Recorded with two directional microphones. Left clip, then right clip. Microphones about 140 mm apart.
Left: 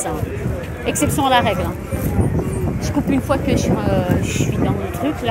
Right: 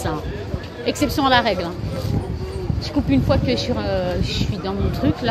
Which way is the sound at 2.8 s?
45° right (ahead or behind).